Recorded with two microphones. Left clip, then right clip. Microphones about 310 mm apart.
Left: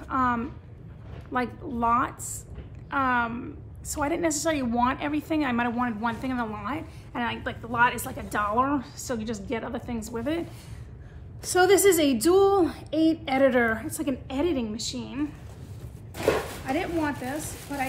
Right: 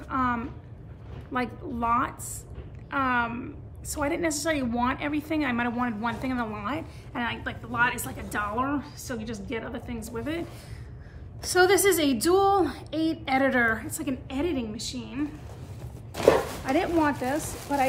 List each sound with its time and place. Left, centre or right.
0.0 s a sound: centre
1.3 s a woman's voice: centre
11.5 s a woman's voice: centre
16.6 s a woman's voice: centre